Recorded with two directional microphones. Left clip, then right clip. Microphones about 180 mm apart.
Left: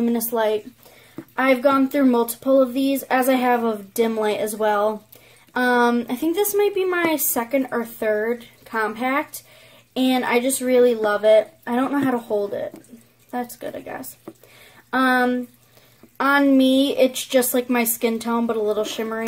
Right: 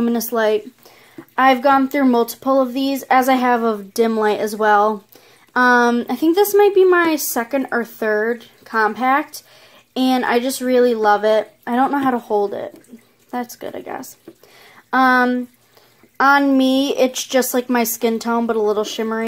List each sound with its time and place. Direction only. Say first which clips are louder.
0.0 s speech: right 3 dB; 45° right (ahead or behind)
16.2 s speech: right 4 dB; 25° right (ahead or behind)